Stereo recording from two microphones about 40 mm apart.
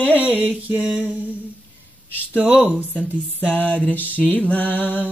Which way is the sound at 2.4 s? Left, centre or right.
Right.